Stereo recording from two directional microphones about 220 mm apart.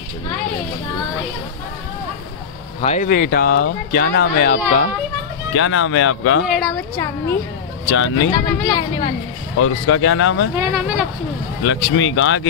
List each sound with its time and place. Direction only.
2.8 s speech: 30° left (ahead or behind)
5.5 s speech: 65° left (ahead or behind)
6.4 s speech: centre (ahead or behind)
7.9 s speech: 60° left (ahead or behind)
8.3 s speech: 20° left (ahead or behind)
9.6 s speech: 65° left (ahead or behind)
10.5 s speech: 10° right (ahead or behind)
11.6 s speech: 60° left (ahead or behind)